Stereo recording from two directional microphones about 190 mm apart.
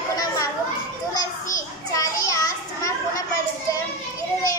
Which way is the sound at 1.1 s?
20° left (ahead or behind).